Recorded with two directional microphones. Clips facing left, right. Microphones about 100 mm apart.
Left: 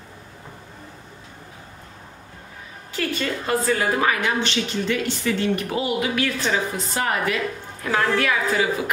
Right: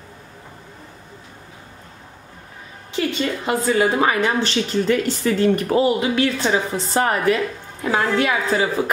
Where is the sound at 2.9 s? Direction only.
20° right (ahead or behind).